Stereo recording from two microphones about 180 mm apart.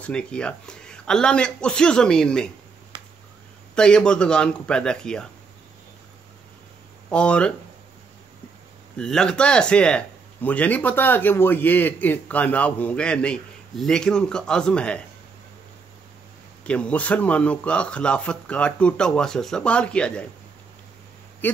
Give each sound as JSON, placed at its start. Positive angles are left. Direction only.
{"t": 0.0, "sound": "speech", "side_deg": 5}
{"t": 2.9, "sound": "finger snapping", "side_deg": -25}
{"t": 3.7, "sound": "speech", "side_deg": 5}
{"t": 7.1, "sound": "speech", "side_deg": 5}
{"t": 8.9, "sound": "speech", "side_deg": 5}
{"t": 16.6, "sound": "speech", "side_deg": 5}